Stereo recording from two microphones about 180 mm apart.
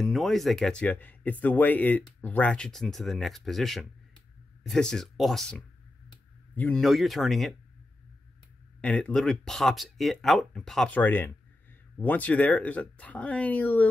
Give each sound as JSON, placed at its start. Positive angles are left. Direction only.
{"t": 0.0, "sound": "speech", "side_deg": 0}
{"t": 8.8, "sound": "speech", "side_deg": 5}